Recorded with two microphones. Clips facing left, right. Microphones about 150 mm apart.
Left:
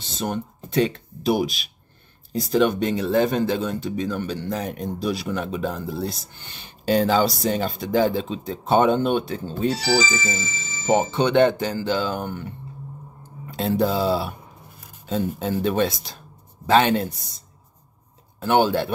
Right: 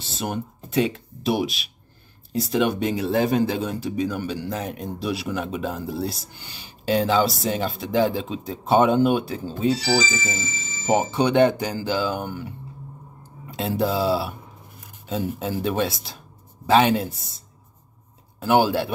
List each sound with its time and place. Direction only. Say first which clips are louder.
0.0 s speech: left 1 dB; 5° right (ahead or behind)
10.3 s speech: left 1 dB; 70° left (ahead or behind)
10.9 s speech: left 1 dB; 10° right (ahead or behind)
18.4 s speech: even; 10° right (ahead or behind)